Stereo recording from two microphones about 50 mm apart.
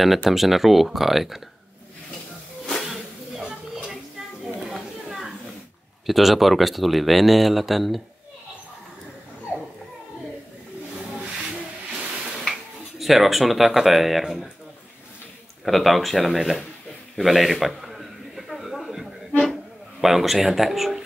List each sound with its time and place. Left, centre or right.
0.3 s speech: centre
2.8 s snake: centre
3.4 s stir: centre
4.6 s a sound: centre
6.0 s speech: centre
11.9 s a sound: centre
13.0 s speech: centre
15.6 s speech: centre
17.2 s a sound: centre
19.5 s speech: centre